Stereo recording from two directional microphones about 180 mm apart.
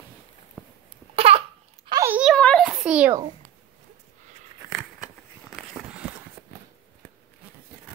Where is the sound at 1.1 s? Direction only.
35° right (ahead or behind).